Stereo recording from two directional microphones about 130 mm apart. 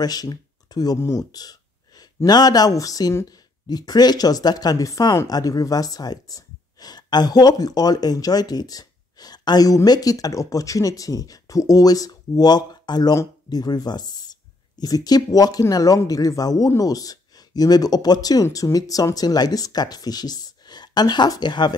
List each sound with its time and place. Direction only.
0.0 s speech: 30° left (ahead or behind)